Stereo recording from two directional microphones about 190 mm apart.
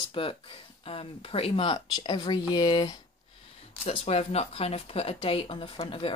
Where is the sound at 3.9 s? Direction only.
35° left (ahead or behind).